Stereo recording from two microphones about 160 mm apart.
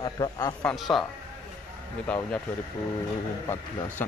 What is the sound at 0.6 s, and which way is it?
Speech, 5° left (ahead or behind).